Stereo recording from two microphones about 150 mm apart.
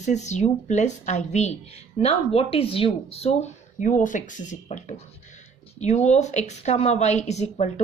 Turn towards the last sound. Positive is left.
turn(degrees=45)  # may be behind; listen again after turning